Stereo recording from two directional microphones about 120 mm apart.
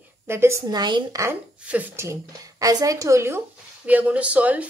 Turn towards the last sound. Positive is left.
turn(degrees=-10)  # may be behind; listen again after turning